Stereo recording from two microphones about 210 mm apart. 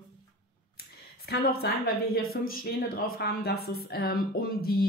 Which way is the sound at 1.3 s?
50° left (ahead or behind).